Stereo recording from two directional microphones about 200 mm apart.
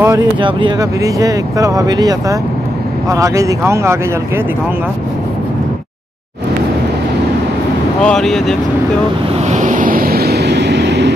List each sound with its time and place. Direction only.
0.0 s speech: 15° right (ahead or behind)
8.0 s speech: 5° left (ahead or behind)
9.5 s vehicle: 40° right (ahead or behind); by 11.1 s 60° right (ahead or behind)